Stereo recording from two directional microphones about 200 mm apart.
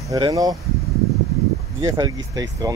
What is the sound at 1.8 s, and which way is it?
Speech, 20° right (ahead or behind).